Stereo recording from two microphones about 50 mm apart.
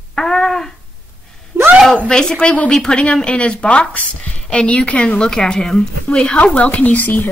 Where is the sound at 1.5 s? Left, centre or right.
Right.